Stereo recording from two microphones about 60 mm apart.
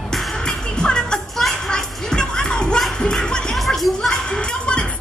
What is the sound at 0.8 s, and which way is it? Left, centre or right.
Music, centre.